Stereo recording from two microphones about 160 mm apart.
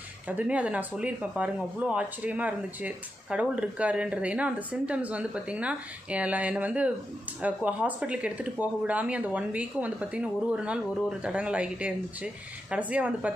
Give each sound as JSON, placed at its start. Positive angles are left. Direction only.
{"t": 0.3, "sound": "speech", "side_deg": -10}